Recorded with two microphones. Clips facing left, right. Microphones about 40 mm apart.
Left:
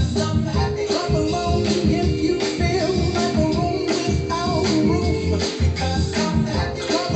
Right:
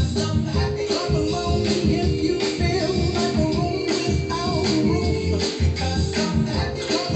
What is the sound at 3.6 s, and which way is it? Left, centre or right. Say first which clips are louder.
Music: left 2 dB; left.